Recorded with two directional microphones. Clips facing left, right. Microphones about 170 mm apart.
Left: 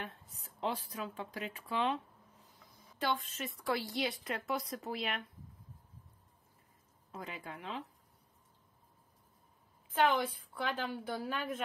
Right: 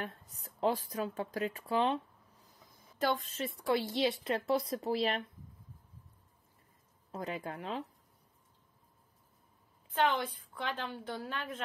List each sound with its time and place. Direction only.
0.0 s speech: 40° right (ahead or behind)
7.1 s speech: 40° right (ahead or behind)
9.9 s a woman's voice: 10° left (ahead or behind)